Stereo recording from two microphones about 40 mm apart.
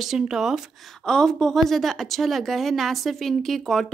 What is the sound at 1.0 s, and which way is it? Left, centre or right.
A woman's voice, centre.